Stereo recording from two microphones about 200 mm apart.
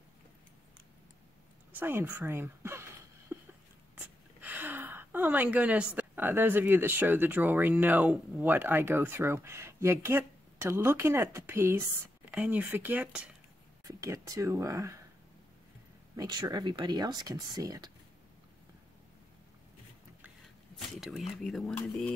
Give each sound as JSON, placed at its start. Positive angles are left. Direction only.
{"t": 1.8, "sound": "a sound", "side_deg": -10}
{"t": 3.9, "sound": "speech", "side_deg": -10}
{"t": 16.2, "sound": "speech", "side_deg": -20}
{"t": 20.7, "sound": "speech", "side_deg": 0}